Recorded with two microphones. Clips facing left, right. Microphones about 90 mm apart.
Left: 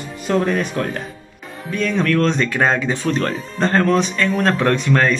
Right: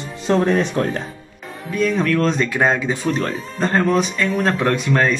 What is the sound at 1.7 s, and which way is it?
Speech, 10° right (ahead or behind).